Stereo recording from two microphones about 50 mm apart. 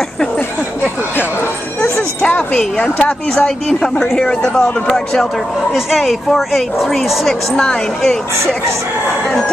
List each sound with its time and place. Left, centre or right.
1.8 s music: centre
2.5 s a woman's voice: left
5.9 s speech: centre